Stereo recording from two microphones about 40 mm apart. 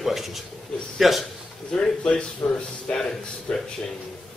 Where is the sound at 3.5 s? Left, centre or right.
Left.